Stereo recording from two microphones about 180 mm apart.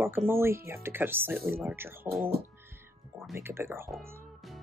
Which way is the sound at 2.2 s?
60° right (ahead or behind).